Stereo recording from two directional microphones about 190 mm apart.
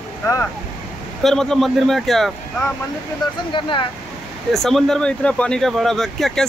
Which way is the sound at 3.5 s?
25° left (ahead or behind).